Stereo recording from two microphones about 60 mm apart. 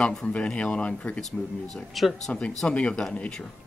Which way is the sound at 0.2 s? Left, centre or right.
Centre.